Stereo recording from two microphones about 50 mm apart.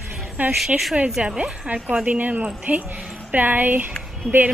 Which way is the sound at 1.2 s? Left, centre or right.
Right.